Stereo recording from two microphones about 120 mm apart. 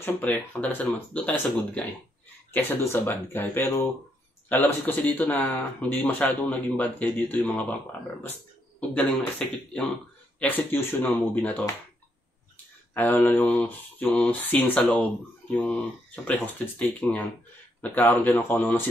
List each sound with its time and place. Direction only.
0.0 s speech: 15° left (ahead or behind)
8.7 s speech: 10° left (ahead or behind)
10.4 s speech: 15° left (ahead or behind)
12.9 s speech: 15° left (ahead or behind)